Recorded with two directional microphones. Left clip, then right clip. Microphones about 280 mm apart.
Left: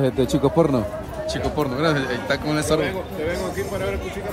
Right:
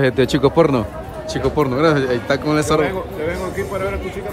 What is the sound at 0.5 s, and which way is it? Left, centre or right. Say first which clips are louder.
Speech: right 4 dB; left.